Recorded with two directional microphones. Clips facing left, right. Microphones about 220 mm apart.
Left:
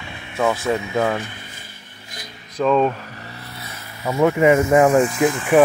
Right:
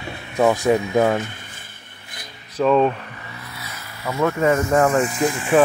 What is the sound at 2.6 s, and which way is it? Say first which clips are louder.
Speech: right 1 dB; 5° right (ahead or behind).